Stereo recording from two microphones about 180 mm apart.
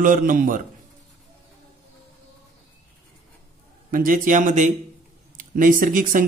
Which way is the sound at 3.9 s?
50° right (ahead or behind).